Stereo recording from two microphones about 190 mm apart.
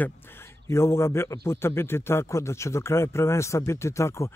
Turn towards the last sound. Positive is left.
turn(degrees=15)  # may be behind; listen again after turning